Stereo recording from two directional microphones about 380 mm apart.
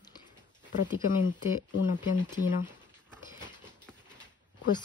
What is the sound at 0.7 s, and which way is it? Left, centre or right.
Speech, centre.